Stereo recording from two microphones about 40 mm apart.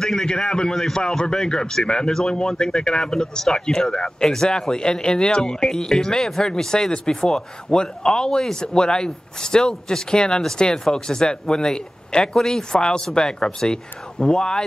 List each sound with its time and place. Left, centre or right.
0.0 s speech: centre